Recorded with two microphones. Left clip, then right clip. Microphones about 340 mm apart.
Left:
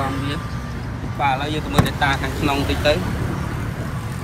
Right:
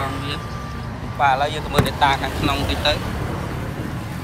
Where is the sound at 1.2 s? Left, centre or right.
Centre.